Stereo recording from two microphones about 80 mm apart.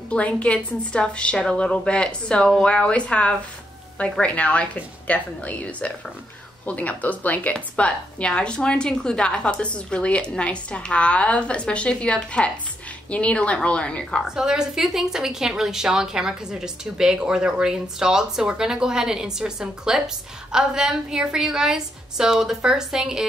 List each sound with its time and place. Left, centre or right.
0.1 s a woman's voice: centre
14.2 s a woman's voice: centre